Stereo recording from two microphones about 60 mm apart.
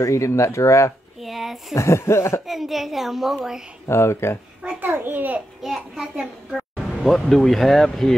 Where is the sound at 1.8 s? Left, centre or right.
Left.